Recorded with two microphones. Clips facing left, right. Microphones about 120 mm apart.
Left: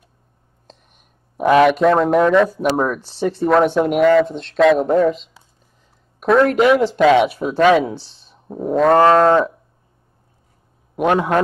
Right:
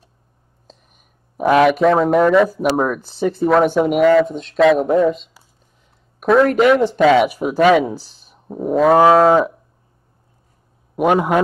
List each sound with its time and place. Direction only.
1.4 s speech: centre (ahead or behind)
8.0 s speech: 30° left (ahead or behind)
8.3 s a sound: 5° right (ahead or behind)
11.0 s a man's voice: 10° right (ahead or behind)